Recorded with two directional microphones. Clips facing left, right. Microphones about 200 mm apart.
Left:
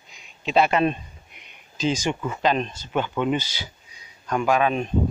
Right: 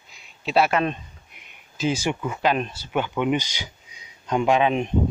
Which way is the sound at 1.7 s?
10° right (ahead or behind).